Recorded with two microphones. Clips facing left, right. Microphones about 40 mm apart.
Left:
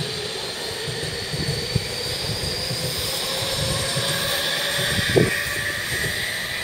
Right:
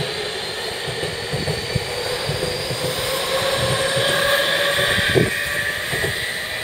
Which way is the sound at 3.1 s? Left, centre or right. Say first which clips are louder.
Right 8 dB; right.